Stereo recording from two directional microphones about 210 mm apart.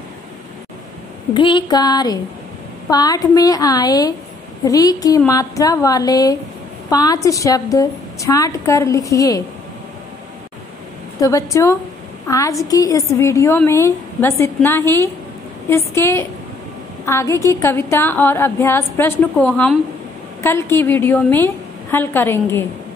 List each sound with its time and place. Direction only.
1.3 s a sound: 20° left (ahead or behind)
2.9 s a woman's voice: 15° left (ahead or behind)
11.1 s a woman's voice: 15° left (ahead or behind)